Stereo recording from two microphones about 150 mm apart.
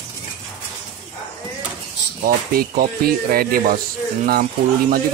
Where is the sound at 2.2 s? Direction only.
70° right (ahead or behind).